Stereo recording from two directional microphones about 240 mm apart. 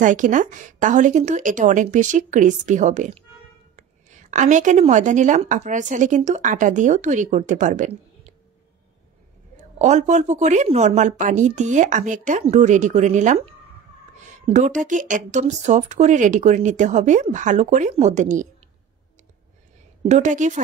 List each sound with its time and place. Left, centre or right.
0.0 s a woman's voice: right
9.8 s a woman's voice: right
20.1 s a woman's voice: right